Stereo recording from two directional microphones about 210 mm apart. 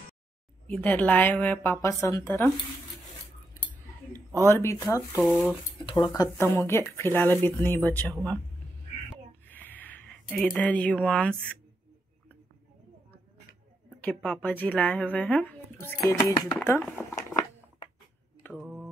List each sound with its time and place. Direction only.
0.7 s speech: 10° left (ahead or behind)
4.5 s speech: 10° left (ahead or behind)
5.1 s speech: centre (ahead or behind)
5.9 s speech: 20° left (ahead or behind)
9.5 s a sound: 10° left (ahead or behind)
14.0 s speech: 5° left (ahead or behind)
17.3 s a sound: 15° left (ahead or behind)
18.5 s mantra: 5° right (ahead or behind)